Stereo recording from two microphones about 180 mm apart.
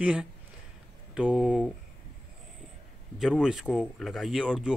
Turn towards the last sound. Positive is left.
turn(degrees=-5)  # may be behind; listen again after turning